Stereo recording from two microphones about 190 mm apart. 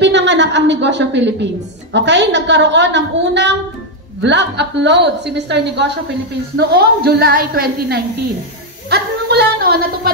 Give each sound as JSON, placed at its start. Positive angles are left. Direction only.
{"t": 0.0, "sound": "a woman's voice", "side_deg": -70}